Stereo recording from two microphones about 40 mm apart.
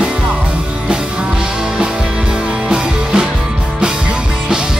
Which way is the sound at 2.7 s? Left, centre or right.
Right.